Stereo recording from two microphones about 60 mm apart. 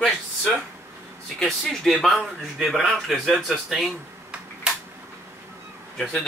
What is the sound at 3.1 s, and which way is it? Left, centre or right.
Speech, centre.